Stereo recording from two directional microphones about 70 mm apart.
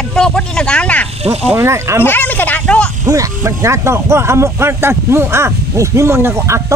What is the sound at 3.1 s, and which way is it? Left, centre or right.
Speech, right.